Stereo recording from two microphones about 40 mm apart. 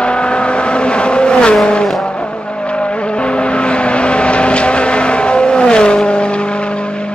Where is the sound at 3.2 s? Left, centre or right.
Left.